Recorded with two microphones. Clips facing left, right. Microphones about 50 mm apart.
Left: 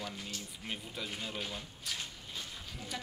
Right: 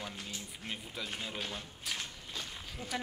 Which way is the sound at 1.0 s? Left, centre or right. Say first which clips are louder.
Right 1 dB; centre.